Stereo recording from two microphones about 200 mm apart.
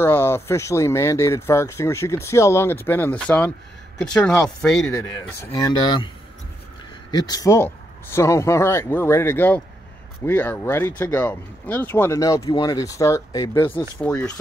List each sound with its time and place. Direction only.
0.0 s speech: 10° left (ahead or behind)
5.4 s speech: 20° left (ahead or behind)
7.1 s speech: 20° left (ahead or behind)
14.0 s speech: 5° left (ahead or behind)